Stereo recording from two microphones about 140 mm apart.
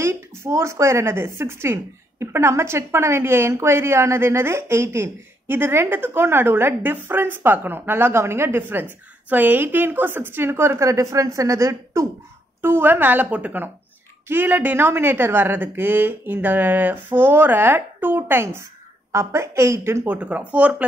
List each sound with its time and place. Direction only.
0.0 s speech: 20° right (ahead or behind)